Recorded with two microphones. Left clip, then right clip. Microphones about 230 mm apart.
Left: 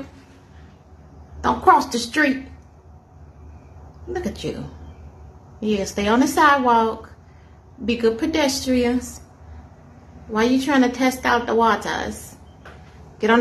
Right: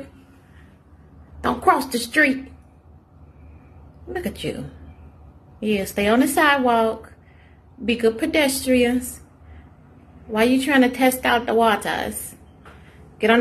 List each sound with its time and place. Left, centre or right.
1.4 s a woman's voice: centre
4.1 s a woman's voice: centre
5.6 s a woman's voice: centre
10.3 s a woman's voice: centre